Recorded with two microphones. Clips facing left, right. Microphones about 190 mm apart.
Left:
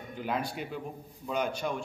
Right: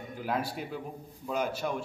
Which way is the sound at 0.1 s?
5° right (ahead or behind).